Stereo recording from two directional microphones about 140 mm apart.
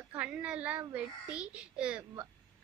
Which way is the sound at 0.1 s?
10° right (ahead or behind).